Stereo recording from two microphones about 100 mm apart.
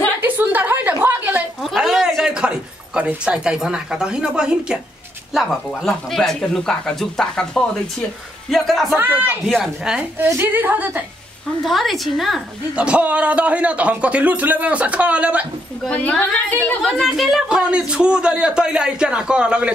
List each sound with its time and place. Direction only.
0.2 s a sound: 20° right (ahead or behind)
1.6 s speech: centre (ahead or behind)
8.9 s a woman's voice: 20° right (ahead or behind)
9.5 s speech: 5° right (ahead or behind)
10.1 s a woman's voice: 25° right (ahead or behind)
11.6 s speech: centre (ahead or behind)
12.7 s speech: 10° right (ahead or behind)
15.9 s a woman's voice: 15° left (ahead or behind)
16.8 s speech: centre (ahead or behind)